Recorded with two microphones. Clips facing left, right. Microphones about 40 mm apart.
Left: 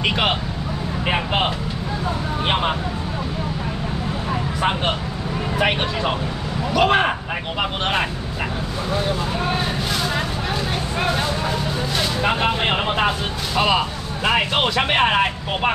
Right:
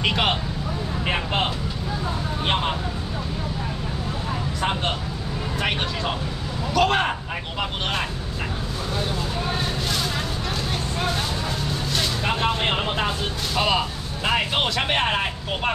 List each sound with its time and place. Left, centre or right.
0.0 s speech: centre
4.3 s vehicle: centre
5.6 s speech: centre
12.2 s speech: centre